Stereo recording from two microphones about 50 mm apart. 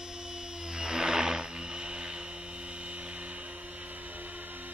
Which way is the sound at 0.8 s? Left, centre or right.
Centre.